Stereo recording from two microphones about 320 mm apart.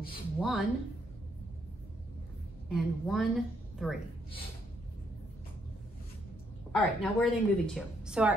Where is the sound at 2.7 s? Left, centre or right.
Centre.